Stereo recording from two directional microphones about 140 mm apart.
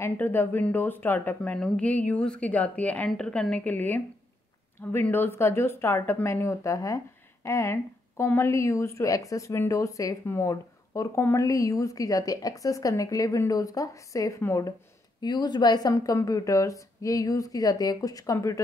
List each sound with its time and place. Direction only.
0.0 s a woman's voice: 15° left (ahead or behind)